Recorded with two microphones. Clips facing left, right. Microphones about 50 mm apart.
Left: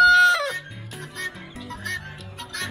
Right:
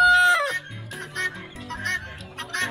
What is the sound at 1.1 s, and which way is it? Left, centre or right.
Honk, right.